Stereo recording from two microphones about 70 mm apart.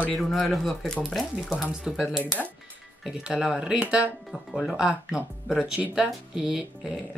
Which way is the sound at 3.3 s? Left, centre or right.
Centre.